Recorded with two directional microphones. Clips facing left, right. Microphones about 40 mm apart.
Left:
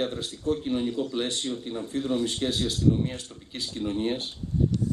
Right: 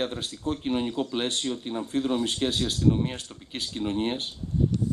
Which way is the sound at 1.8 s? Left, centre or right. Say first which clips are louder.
Right 1 dB; right.